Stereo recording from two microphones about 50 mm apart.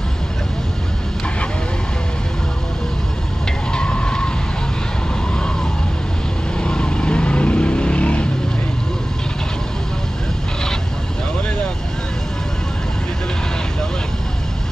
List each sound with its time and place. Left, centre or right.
3.7 s music: centre
5.3 s vehicle: centre